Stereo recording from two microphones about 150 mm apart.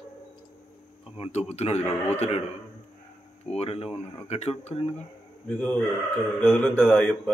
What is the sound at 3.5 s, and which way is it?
Speech, 45° left (ahead or behind).